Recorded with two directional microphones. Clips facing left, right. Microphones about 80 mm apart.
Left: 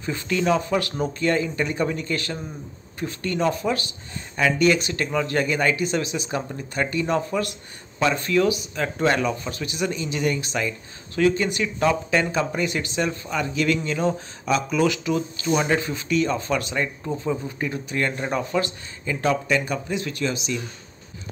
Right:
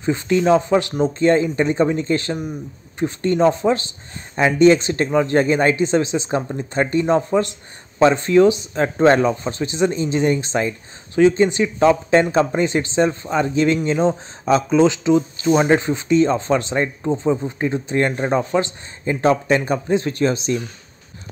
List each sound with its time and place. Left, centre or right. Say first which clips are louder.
0.0 s speech: right 7 dB; right